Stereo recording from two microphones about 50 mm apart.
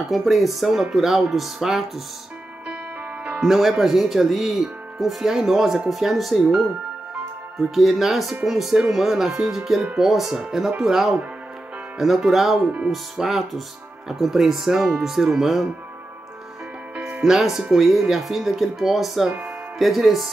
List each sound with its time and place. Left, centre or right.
0.1 s speech: centre
3.3 s speech: centre
7.7 s speech: centre
12.6 s speech: centre
12.9 s speech: centre
17.2 s speech: centre